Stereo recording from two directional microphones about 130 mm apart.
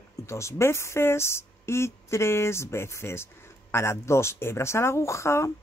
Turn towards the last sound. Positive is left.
turn(degrees=20)  # may be behind; listen again after turning